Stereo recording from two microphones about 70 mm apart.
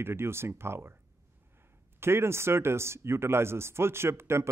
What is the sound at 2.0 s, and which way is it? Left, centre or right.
Speech, right.